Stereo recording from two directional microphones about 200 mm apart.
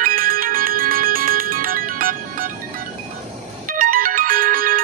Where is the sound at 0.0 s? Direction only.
45° right (ahead or behind).